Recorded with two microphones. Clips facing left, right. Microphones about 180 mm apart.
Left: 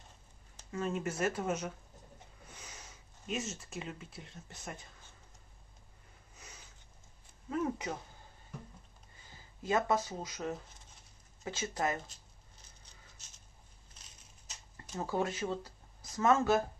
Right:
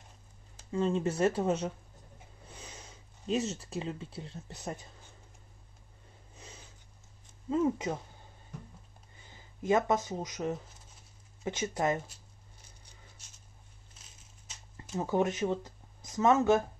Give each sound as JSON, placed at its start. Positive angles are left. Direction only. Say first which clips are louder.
{"t": 0.7, "sound": "speech", "louder": "right 6 dB", "side_deg": -25}
{"t": 6.3, "sound": "snort", "louder": "right 4 dB", "side_deg": -25}
{"t": 7.4, "sound": "speech", "louder": "right 6 dB", "side_deg": -25}
{"t": 9.3, "sound": "speech", "louder": "right 5 dB", "side_deg": -20}
{"t": 15.0, "sound": "speech", "louder": "right 5 dB", "side_deg": -20}